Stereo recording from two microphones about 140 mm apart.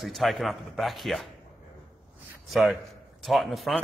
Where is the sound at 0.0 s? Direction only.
Centre (ahead or behind).